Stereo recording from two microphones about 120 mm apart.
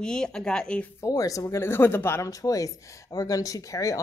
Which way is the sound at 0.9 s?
30° left (ahead or behind).